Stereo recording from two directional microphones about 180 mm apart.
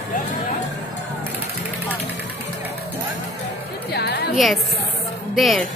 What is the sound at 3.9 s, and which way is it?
Music, 65° left (ahead or behind).